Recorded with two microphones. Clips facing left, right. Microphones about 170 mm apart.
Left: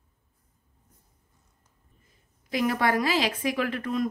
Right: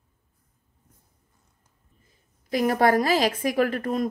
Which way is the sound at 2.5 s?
40° right (ahead or behind).